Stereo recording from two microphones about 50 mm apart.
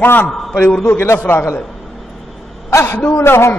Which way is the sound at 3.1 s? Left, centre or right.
Left.